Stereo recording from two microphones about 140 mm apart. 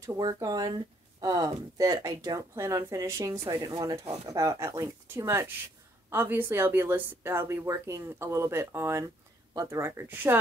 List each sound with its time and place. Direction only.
0.0 s speech: 25° right (ahead or behind)